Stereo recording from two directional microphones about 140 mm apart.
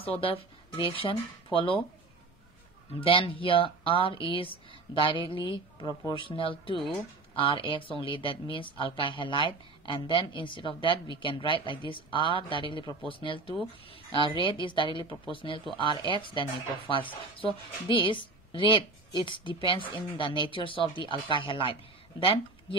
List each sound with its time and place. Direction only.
0.0 s speech: 40° left (ahead or behind)
3.0 s speech: 40° left (ahead or behind)